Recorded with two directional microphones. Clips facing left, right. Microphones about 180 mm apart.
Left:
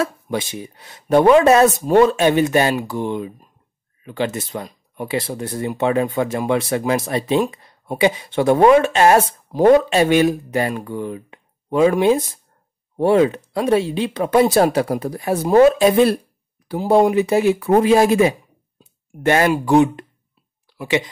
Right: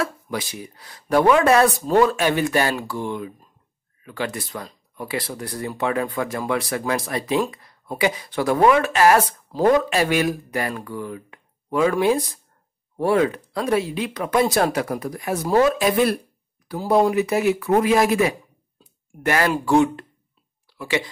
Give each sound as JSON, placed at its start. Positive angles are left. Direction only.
{"t": 0.0, "sound": "speech", "side_deg": 25}
{"t": 18.8, "sound": "a sound", "side_deg": 25}
{"t": 19.5, "sound": "speech", "side_deg": 20}